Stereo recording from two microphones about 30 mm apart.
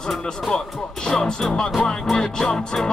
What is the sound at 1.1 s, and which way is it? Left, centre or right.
Music, left.